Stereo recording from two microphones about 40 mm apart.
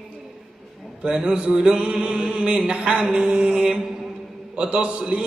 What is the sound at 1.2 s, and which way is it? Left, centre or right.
Mantra, right.